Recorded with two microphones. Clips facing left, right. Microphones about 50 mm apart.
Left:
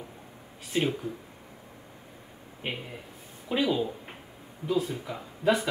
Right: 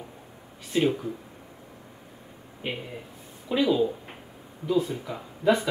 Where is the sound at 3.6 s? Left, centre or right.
Centre.